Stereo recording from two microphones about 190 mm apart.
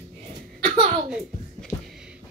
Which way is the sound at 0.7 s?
30° right (ahead or behind).